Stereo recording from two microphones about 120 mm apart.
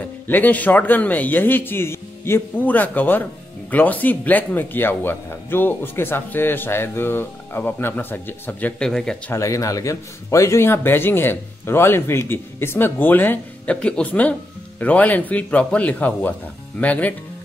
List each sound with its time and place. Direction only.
0.3 s a man's voice: 15° left (ahead or behind)
9.3 s a man's voice: 25° left (ahead or behind)